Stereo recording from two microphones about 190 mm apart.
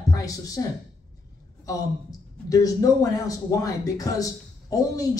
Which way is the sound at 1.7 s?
20° left (ahead or behind).